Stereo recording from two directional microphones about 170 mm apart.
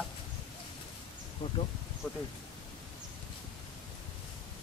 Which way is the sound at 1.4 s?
35° left (ahead or behind).